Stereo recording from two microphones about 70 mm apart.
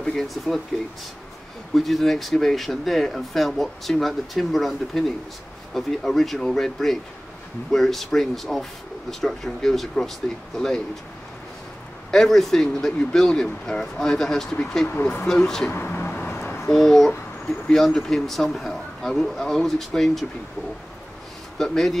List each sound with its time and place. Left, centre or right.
0.0 s speech: centre
1.7 s speech: centre
12.1 s speech: centre
15.7 s a sound: left
16.6 s speech: centre
21.5 s speech: centre